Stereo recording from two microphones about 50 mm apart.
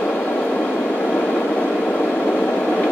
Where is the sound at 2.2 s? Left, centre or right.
Left.